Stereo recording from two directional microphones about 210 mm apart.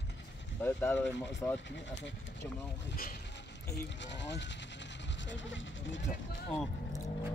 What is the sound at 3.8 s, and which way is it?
Speech, 60° left (ahead or behind).